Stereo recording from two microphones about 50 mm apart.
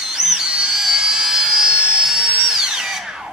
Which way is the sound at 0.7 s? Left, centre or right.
Centre.